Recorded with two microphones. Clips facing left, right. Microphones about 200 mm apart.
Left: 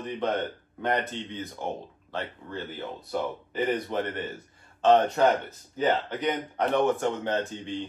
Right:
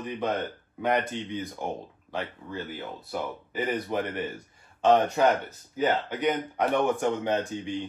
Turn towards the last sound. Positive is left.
turn(degrees=-15)  # may be behind; listen again after turning